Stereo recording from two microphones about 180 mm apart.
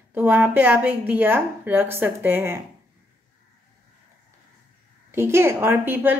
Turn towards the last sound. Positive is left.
turn(degrees=-10)  # may be behind; listen again after turning